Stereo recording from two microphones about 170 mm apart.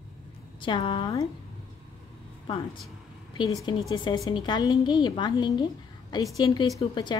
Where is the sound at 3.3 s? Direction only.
25° left (ahead or behind).